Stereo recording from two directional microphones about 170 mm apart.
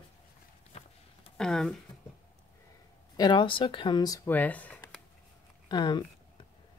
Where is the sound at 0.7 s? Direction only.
40° left (ahead or behind).